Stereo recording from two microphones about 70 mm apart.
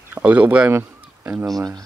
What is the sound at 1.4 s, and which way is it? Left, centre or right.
Speech, right.